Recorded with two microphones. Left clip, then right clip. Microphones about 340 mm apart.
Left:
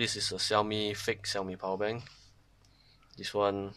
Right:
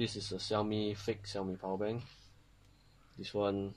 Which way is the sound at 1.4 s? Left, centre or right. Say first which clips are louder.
Left 4 dB; left.